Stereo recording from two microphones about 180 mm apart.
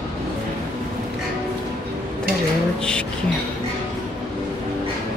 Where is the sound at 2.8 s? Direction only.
5° left (ahead or behind).